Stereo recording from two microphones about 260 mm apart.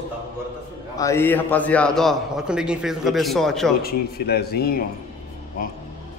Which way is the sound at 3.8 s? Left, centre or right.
Left.